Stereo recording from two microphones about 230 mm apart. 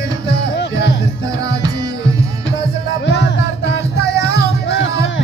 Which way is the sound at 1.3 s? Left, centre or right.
Centre.